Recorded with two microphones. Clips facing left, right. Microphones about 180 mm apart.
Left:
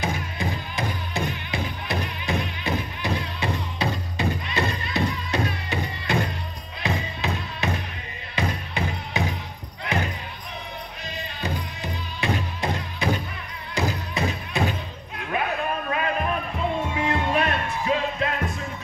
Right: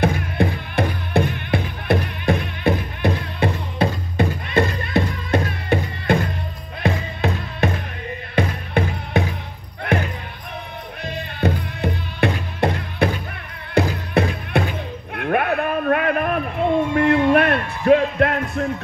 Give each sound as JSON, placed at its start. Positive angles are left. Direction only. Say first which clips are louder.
{"t": 0.0, "sound": "music", "louder": "right 8 dB", "side_deg": -60}
{"t": 9.9, "sound": "basketball bounce", "louder": "right 6 dB", "side_deg": -55}
{"t": 11.1, "sound": "music", "louder": "right 9 dB", "side_deg": -60}
{"t": 15.1, "sound": "bow-wow", "louder": "right 7 dB", "side_deg": -60}
{"t": 16.6, "sound": "music", "louder": "right 10 dB", "side_deg": -60}